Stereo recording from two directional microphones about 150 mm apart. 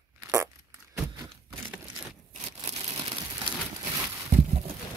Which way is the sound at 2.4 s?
50° right (ahead or behind).